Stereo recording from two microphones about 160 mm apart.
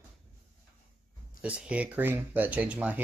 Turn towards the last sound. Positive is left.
turn(degrees=-10)  # may be behind; listen again after turning